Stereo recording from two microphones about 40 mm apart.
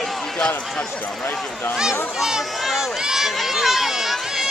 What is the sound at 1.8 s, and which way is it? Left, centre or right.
Speech, centre.